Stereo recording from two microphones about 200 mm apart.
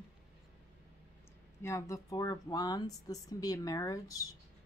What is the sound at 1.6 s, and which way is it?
Speech, 15° left (ahead or behind).